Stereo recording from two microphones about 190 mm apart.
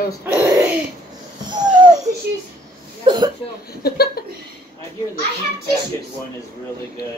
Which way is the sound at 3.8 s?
55° left (ahead or behind).